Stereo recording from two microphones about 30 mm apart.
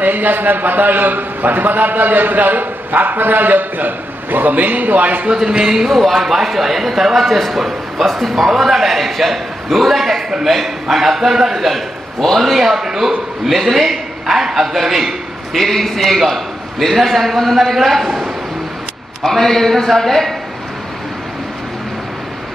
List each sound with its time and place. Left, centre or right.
0.0 s a man's voice: right
6.1 s a man's voice: centre
8.5 s a man's voice: centre
12.8 s a man's voice: centre
13.5 s a man's voice: centre
15.5 s a man's voice: centre
19.2 s a man's voice: centre